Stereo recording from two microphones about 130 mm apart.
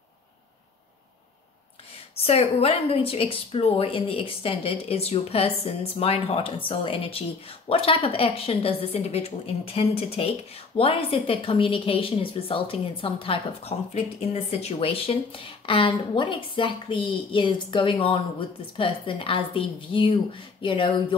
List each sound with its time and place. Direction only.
2.1 s a woman's voice: 50° left (ahead or behind)